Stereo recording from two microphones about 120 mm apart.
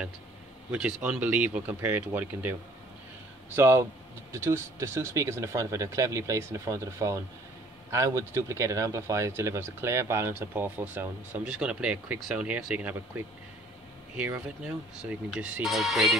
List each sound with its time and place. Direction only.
0.7 s speech: 10° right (ahead or behind)
3.5 s speech: 20° right (ahead or behind)
14.1 s speech: 10° right (ahead or behind)